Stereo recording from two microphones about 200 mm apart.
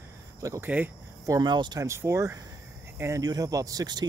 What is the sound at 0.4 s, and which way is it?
Speech, 15° right (ahead or behind).